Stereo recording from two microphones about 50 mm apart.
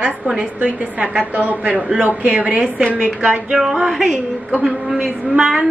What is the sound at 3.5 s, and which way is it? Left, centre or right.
A woman's voice, centre.